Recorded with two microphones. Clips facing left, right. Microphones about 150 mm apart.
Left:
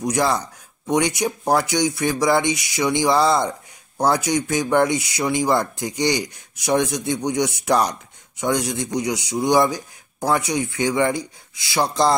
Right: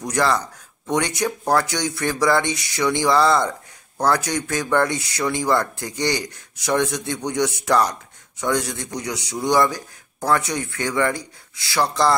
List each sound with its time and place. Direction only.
0.0 s speech: 15° left (ahead or behind)